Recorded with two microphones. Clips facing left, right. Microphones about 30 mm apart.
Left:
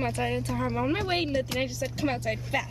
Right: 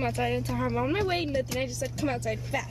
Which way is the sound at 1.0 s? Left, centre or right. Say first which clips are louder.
Even; centre.